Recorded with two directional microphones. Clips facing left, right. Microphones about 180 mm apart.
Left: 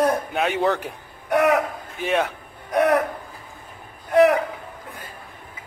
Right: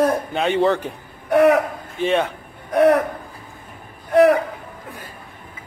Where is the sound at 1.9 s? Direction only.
5° left (ahead or behind).